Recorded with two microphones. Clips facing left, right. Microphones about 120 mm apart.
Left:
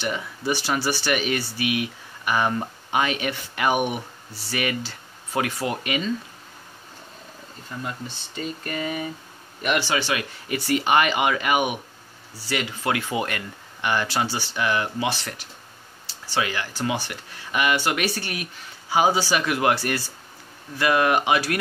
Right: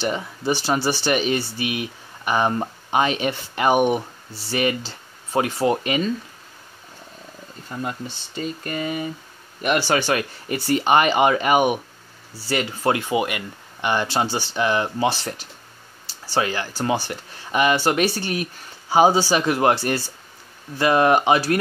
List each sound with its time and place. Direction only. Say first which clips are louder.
0.0 s speech: right 3 dB; 30° right (ahead or behind)
8.4 s speech: right 2 dB; 30° right (ahead or behind)
9.6 s speech: right 3 dB; 40° right (ahead or behind)
13.1 s speech: right 4 dB; 15° right (ahead or behind); by 21.5 s 30° right (ahead or behind)